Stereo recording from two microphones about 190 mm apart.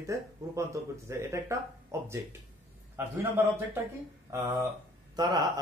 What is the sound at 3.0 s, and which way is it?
Speech, 10° right (ahead or behind).